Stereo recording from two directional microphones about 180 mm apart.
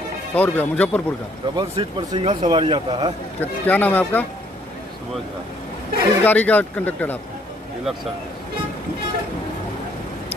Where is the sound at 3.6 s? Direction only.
10° left (ahead or behind).